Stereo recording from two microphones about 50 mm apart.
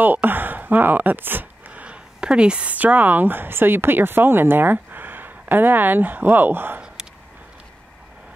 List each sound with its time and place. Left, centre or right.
0.0 s speech: right
1.7 s a sound: right
2.7 s speech: right